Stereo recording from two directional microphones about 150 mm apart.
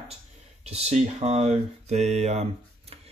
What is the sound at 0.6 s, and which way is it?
Mantra, 45° right (ahead or behind).